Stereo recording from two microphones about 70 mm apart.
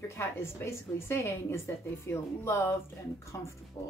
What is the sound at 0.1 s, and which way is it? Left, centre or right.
Speech, left.